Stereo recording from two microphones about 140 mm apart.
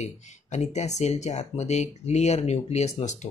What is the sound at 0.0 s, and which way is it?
Speech, 55° left (ahead or behind).